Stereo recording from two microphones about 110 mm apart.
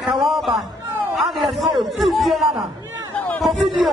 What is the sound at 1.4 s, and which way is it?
Speech, centre (ahead or behind).